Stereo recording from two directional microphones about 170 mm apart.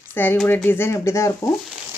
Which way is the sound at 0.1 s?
10° left (ahead or behind).